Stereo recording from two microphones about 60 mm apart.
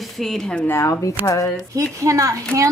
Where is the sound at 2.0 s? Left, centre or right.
Right.